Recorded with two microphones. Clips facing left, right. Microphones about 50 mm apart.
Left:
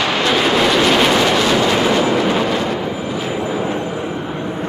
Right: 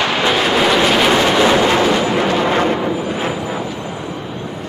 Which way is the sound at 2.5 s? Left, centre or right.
Right.